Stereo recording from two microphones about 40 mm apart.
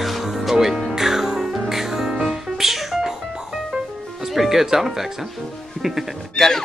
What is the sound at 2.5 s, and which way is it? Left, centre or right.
Music, centre.